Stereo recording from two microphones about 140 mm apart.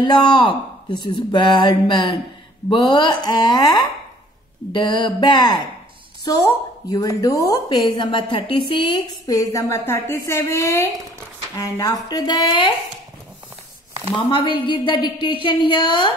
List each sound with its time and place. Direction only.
0.0 s a woman's voice: 35° left (ahead or behind)
14.3 s speech: 35° left (ahead or behind)